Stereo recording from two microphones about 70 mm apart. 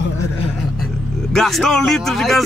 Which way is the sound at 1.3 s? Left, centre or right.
Centre.